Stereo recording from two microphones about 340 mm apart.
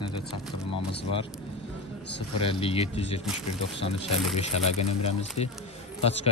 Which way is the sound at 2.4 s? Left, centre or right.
Centre.